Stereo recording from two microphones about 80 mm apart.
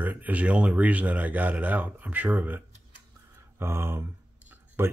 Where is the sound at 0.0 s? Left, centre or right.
Right.